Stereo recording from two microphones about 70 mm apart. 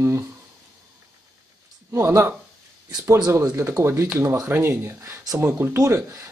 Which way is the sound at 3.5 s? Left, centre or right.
Right.